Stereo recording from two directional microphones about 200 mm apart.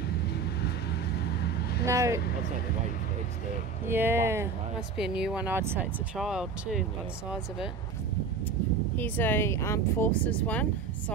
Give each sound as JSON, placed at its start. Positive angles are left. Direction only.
{"t": 0.3, "sound": "vehicle", "side_deg": 55}
{"t": 1.9, "sound": "speech", "side_deg": -15}
{"t": 3.8, "sound": "speech", "side_deg": -10}
{"t": 8.9, "sound": "speech", "side_deg": 10}